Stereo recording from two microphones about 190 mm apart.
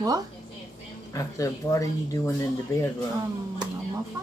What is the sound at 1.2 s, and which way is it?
Speech, 15° left (ahead or behind).